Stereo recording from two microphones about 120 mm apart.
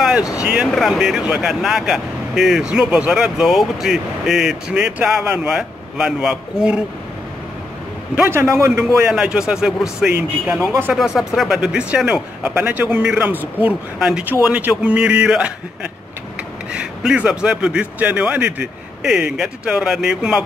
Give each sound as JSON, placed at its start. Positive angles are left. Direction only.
{"t": 0.0, "sound": "a sound", "side_deg": -5}
{"t": 0.4, "sound": "speech", "side_deg": -10}
{"t": 8.2, "sound": "a man's voice", "side_deg": -20}
{"t": 9.1, "sound": "speech", "side_deg": -5}
{"t": 10.6, "sound": "a man's voice", "side_deg": -30}
{"t": 10.9, "sound": "speech", "side_deg": -5}